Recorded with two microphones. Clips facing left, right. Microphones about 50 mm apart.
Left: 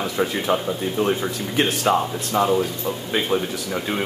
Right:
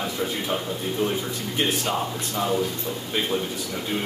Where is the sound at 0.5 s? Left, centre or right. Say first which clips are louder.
Left 7 dB; left.